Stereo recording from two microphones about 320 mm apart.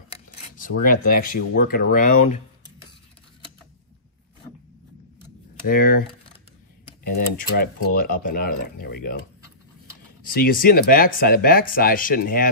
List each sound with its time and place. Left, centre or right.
0.1 s speech: left
5.7 s speech: left
7.2 s speech: left
10.2 s speech: left